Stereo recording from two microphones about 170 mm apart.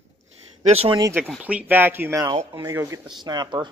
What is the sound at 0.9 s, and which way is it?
Speech, 15° right (ahead or behind).